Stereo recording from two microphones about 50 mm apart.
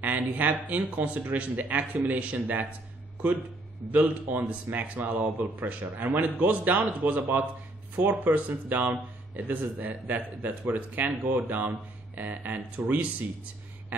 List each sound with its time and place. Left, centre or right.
0.0 s a man's voice: right
3.9 s a man's voice: right